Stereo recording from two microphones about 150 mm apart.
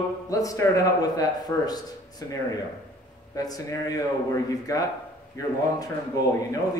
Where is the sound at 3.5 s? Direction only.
25° left (ahead or behind).